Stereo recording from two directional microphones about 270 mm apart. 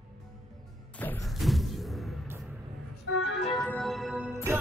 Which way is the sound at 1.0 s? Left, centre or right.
Centre.